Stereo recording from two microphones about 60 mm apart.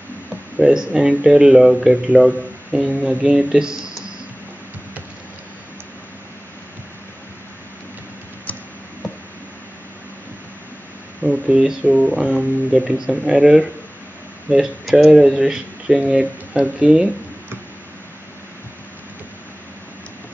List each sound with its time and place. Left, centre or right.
0.6 s speech: centre
2.2 s speech: centre
11.2 s a sound: right
11.9 s speech: centre